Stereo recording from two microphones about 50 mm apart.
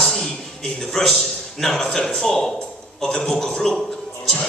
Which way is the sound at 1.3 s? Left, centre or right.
Centre.